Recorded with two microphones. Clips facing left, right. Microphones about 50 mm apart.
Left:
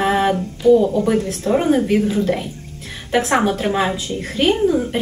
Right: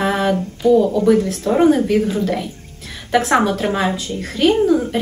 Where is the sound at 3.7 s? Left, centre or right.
Centre.